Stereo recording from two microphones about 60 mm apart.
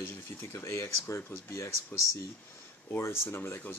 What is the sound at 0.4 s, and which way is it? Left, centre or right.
Speech, left.